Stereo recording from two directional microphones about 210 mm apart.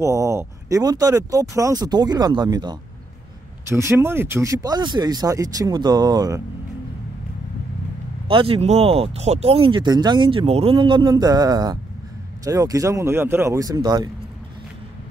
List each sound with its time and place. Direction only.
0.0 s speech: 15° right (ahead or behind)
8.3 s speech: 25° right (ahead or behind)